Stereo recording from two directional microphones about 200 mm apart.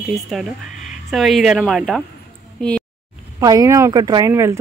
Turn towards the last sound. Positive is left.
turn(degrees=-15)  # may be behind; listen again after turning